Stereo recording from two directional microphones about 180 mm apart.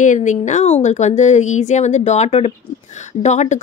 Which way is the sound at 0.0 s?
45° left (ahead or behind).